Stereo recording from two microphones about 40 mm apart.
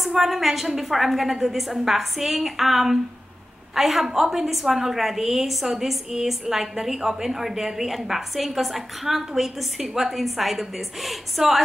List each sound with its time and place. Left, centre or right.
0.0 s a woman's voice: centre